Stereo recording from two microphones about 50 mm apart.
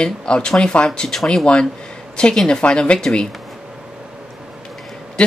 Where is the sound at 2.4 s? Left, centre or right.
Centre.